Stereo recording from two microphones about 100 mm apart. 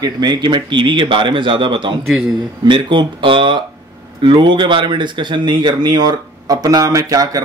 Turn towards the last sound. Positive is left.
turn(degrees=-35)  # may be behind; listen again after turning